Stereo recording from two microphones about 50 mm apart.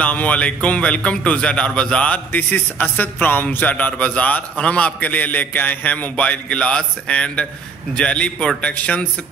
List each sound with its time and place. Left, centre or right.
0.0 s a man's voice: left